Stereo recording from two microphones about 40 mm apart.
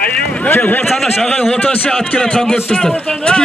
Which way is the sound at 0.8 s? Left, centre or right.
Centre.